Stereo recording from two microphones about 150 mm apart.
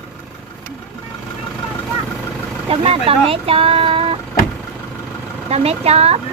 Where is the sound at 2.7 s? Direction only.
40° right (ahead or behind).